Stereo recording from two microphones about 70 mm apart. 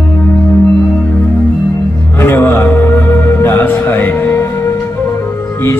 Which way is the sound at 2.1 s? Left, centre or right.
Left.